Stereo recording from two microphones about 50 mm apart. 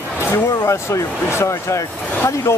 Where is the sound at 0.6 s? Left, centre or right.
Left.